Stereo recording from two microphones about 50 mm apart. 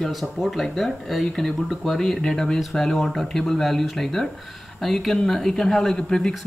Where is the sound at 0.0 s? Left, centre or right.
Centre.